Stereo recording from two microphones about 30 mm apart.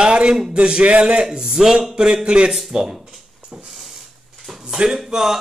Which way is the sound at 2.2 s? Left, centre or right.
Right.